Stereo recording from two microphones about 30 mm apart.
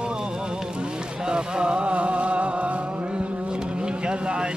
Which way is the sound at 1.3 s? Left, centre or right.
Right.